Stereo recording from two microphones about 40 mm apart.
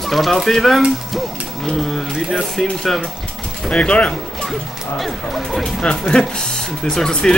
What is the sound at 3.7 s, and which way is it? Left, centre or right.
Speech, left.